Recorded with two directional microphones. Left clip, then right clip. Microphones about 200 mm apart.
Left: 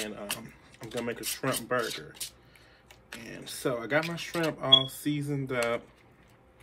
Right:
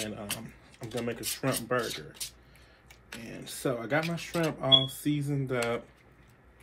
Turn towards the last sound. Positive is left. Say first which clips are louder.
# left 1 dB
turn(degrees=5)  # may be behind; listen again after turning